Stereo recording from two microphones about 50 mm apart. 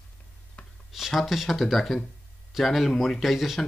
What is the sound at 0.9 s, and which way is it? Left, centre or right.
Speech, centre.